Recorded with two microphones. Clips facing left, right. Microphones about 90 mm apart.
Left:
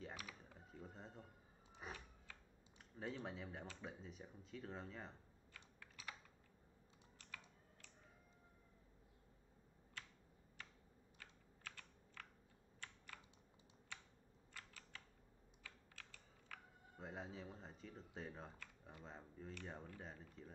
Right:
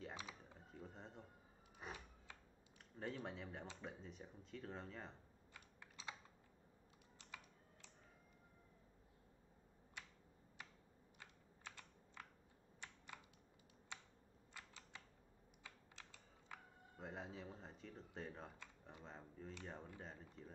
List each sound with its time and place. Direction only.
0.1 s a sound: 20° right (ahead or behind)
0.6 s a sound: centre (ahead or behind)
3.3 s speech: centre (ahead or behind)
5.5 s computer keyboard: 25° right (ahead or behind)
7.2 s computer keyboard: 20° right (ahead or behind)
10.6 s computer keyboard: 15° right (ahead or behind)
14.5 s typing: 20° right (ahead or behind)
16.9 s a sound: centre (ahead or behind)
18.6 s typing: 20° right (ahead or behind)
19.0 s speech: centre (ahead or behind)